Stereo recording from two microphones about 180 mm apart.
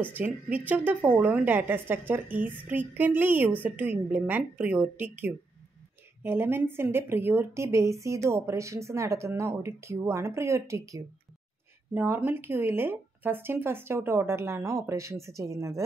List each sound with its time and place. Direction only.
0.0 s a woman's voice: 10° right (ahead or behind)